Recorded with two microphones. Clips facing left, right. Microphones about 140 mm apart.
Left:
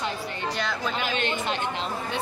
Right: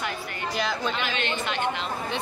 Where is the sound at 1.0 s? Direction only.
45° left (ahead or behind).